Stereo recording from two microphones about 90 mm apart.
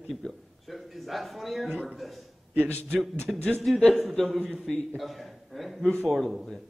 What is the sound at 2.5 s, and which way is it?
Speech, 20° right (ahead or behind).